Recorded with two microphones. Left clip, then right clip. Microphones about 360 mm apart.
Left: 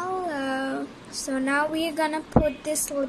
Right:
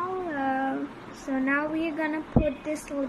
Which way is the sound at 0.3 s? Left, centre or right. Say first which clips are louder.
Even; left.